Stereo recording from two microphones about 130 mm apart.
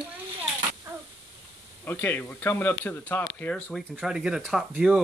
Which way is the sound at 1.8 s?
15° left (ahead or behind).